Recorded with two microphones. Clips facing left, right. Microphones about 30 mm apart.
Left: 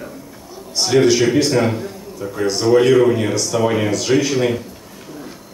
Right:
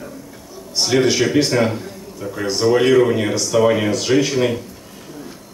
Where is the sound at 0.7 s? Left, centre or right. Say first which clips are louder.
Left 2 dB; centre.